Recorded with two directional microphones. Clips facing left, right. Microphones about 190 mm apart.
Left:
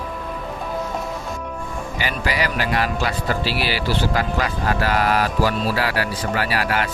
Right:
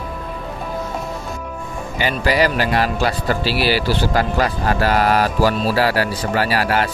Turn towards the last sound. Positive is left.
turn(degrees=-35)  # may be behind; listen again after turning